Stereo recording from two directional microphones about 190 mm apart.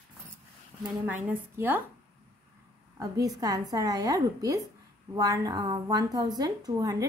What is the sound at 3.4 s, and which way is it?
A woman's voice, 20° right (ahead or behind).